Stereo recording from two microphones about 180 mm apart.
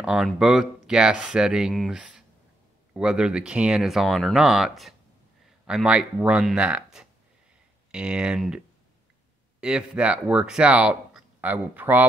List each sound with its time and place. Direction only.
0.0 s speech: centre (ahead or behind)